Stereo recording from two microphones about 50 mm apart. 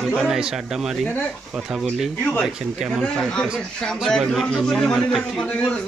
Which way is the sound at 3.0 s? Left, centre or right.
Centre.